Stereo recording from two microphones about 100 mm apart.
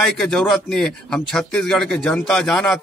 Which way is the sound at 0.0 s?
5° left (ahead or behind).